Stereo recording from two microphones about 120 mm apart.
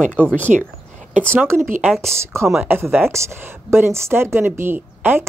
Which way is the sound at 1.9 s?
Centre (ahead or behind).